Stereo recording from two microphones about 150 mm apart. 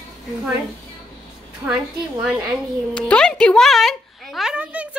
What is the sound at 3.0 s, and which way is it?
A child's voice, 5° left (ahead or behind).